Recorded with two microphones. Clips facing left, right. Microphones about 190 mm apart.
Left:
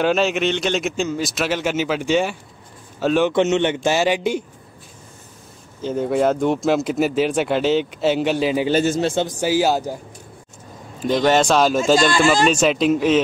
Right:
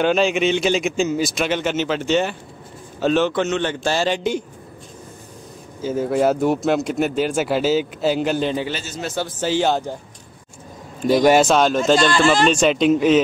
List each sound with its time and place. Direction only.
0.0 s a man's voice: centre (ahead or behind)
3.3 s a man's voice: 20° left (ahead or behind)
5.8 s speech: 5° right (ahead or behind)
8.7 s a man's voice: 45° left (ahead or behind)
9.0 s speech: 25° left (ahead or behind)
9.3 s a man's voice: 10° left (ahead or behind)
11.1 s speech: 10° right (ahead or behind)